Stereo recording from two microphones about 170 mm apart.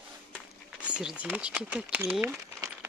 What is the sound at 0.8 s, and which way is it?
Speech, 5° right (ahead or behind).